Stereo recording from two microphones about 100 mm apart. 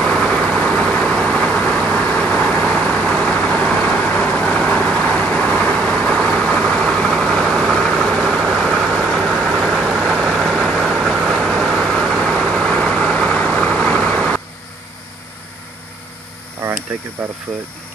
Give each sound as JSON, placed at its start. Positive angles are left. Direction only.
{"t": 0.0, "sound": "vehicle", "side_deg": 5}